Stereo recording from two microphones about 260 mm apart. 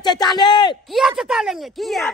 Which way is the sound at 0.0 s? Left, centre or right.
Centre.